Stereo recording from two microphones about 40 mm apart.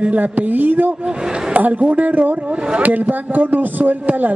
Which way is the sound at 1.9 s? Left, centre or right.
Right.